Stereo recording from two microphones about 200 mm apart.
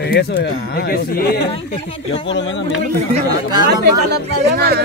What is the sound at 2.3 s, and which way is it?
Speech, 65° left (ahead or behind).